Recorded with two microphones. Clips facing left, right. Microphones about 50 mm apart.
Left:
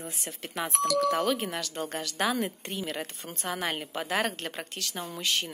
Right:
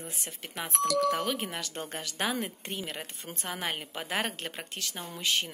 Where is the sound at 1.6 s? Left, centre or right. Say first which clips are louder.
Left 4 dB; right.